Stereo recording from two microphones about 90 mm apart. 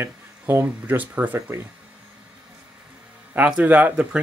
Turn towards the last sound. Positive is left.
turn(degrees=-15)  # may be behind; listen again after turning